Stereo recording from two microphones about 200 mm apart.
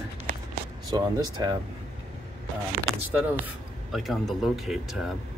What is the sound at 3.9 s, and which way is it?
Speech, centre (ahead or behind).